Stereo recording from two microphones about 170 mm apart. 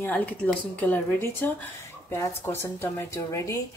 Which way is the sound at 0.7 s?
10° left (ahead or behind).